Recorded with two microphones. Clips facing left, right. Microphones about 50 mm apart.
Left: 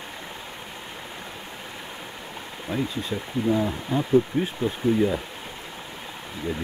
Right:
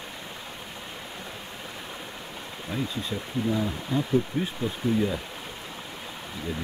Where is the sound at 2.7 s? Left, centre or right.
Centre.